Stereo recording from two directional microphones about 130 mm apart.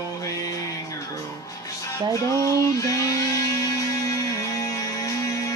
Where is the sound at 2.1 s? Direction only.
25° left (ahead or behind).